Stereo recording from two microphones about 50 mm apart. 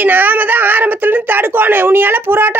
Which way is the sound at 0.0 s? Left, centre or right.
Right.